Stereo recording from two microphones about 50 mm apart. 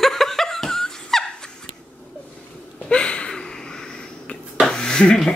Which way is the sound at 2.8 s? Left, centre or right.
Centre.